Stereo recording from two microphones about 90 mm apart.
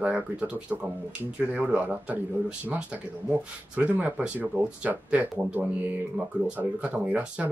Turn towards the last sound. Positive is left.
turn(degrees=-15)  # may be behind; listen again after turning